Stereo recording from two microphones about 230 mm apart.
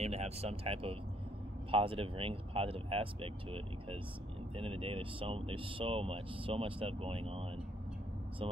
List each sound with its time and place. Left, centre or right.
0.0 s speech: right